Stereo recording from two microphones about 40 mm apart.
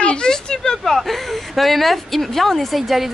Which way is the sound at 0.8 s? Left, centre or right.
Centre.